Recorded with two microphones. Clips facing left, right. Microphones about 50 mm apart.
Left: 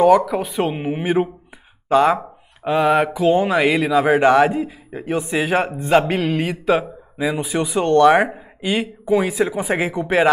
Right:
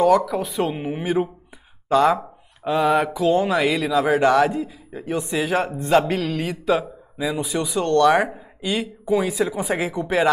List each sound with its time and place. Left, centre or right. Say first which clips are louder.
0.0 s speech: left 3 dB; left